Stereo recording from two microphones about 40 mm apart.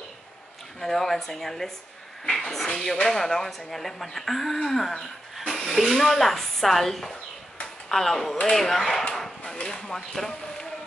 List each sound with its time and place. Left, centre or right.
0.7 s speech: centre
7.6 s a sound: centre
8.5 s speech: centre